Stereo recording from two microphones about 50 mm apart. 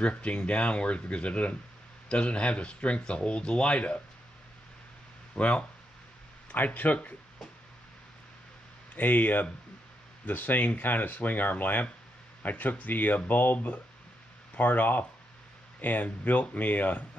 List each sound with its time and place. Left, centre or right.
0.0 s speech: left
5.3 s speech: left
8.9 s speech: left